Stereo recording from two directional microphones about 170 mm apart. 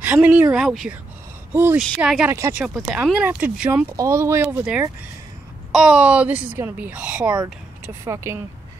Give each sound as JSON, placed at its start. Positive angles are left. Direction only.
{"t": 0.0, "sound": "speech", "side_deg": -10}